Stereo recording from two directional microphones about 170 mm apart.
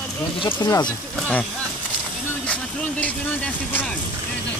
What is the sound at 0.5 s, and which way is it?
Speech, 20° left (ahead or behind).